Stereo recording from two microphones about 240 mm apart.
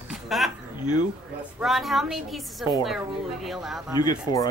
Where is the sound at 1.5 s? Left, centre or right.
Centre.